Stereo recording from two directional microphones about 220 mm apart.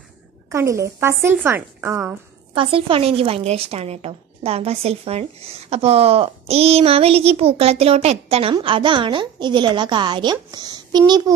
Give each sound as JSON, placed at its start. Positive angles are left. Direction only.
{"t": 0.5, "sound": "a woman's voice", "side_deg": -15}
{"t": 2.5, "sound": "a woman's voice", "side_deg": -25}